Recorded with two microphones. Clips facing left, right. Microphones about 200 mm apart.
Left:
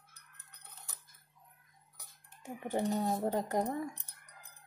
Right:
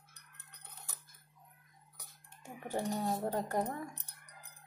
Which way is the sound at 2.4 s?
20° left (ahead or behind).